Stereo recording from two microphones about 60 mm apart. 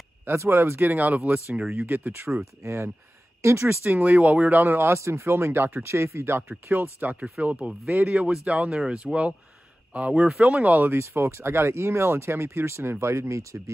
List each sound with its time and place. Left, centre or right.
0.4 s speech: right
2.2 s speech: right
3.8 s speech: right
6.7 s speech: right
7.4 s speech: centre
10.9 s speech: right